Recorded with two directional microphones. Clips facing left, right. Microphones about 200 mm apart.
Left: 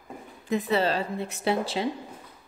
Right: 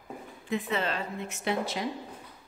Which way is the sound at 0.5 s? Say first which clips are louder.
Left 6 dB; 35° left (ahead or behind).